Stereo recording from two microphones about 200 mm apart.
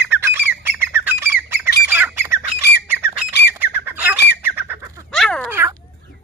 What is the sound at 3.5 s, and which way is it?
Squawk, 10° right (ahead or behind).